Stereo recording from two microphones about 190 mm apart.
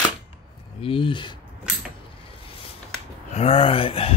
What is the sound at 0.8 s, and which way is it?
Speech, 25° left (ahead or behind).